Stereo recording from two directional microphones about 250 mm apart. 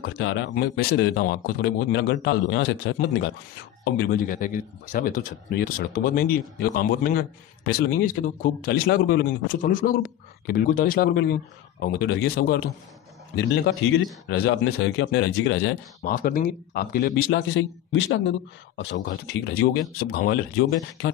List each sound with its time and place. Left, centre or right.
0.0 s speech: left
3.8 s speech: left